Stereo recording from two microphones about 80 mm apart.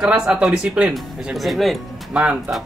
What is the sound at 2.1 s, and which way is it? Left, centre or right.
Speech, centre.